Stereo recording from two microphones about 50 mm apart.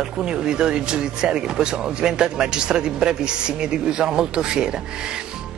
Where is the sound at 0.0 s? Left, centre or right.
Centre.